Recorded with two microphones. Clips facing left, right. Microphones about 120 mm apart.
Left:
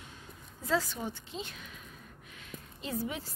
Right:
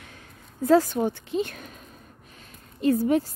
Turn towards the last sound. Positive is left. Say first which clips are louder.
# right 15 dB
turn(degrees=-50)  # may be behind; listen again after turning